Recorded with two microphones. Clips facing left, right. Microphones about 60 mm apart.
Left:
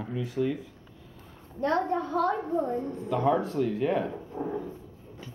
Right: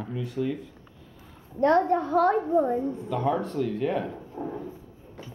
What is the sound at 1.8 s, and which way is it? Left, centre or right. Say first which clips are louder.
Speech: right 4 dB; right.